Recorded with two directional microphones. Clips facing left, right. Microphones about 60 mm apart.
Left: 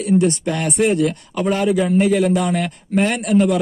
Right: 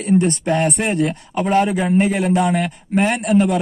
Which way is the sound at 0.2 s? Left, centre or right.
Right.